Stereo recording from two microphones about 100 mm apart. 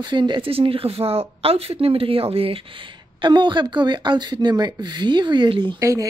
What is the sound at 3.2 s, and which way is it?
Speech, 50° right (ahead or behind).